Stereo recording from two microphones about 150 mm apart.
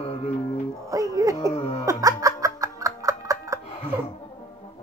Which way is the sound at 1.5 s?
25° left (ahead or behind).